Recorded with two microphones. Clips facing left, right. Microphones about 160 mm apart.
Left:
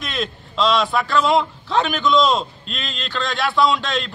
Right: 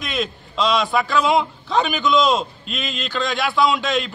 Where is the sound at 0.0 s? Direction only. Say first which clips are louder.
Right 1 dB; centre (ahead or behind).